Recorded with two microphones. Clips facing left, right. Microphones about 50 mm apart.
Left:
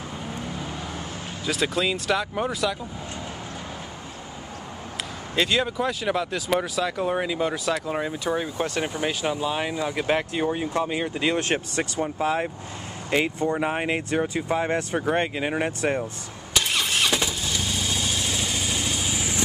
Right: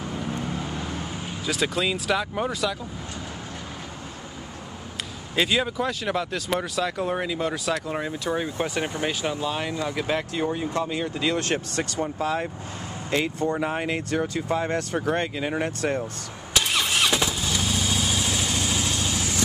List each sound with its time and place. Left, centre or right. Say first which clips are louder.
1.4 s speech: left 1 dB; centre
5.3 s speech: even; centre
16.5 s vehicle: right 1 dB; centre